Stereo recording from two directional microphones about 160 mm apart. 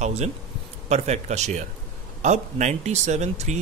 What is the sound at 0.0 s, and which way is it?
Speech, 45° right (ahead or behind).